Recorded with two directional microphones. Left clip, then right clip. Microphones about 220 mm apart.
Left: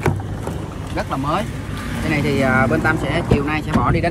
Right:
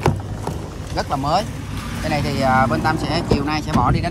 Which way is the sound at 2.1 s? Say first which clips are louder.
Left 1 dB; 65° right (ahead or behind).